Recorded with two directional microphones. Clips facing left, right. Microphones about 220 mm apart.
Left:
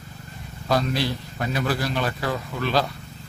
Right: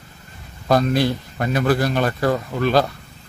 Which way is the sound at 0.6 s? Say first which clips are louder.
Right 6 dB; 50° right (ahead or behind).